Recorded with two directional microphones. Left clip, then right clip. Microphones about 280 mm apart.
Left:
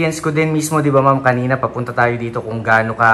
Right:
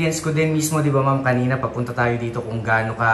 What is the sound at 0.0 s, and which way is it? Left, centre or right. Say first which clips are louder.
A man's voice: left 4 dB; centre.